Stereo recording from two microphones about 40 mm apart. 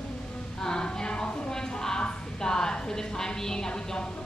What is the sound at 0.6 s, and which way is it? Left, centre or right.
A woman's voice, centre.